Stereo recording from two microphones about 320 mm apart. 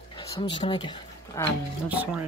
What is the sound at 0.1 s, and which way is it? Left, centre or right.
Speech, centre.